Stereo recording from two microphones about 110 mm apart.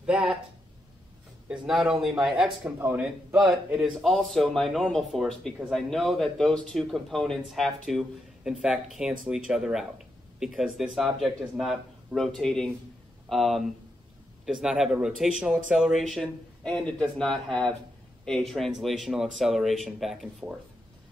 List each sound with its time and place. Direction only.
0.0 s speech: 10° right (ahead or behind)
1.5 s speech: 5° right (ahead or behind)
2.8 s a man's voice: 20° right (ahead or behind)
3.3 s speech: 5° right (ahead or behind)